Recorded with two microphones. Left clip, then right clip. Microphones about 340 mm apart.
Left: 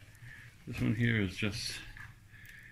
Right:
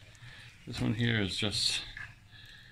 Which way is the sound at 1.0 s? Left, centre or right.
Centre.